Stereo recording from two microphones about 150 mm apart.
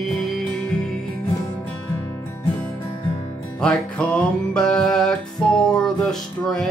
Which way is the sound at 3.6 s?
5° left (ahead or behind).